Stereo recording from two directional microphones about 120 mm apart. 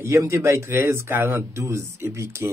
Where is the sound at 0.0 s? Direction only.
25° right (ahead or behind).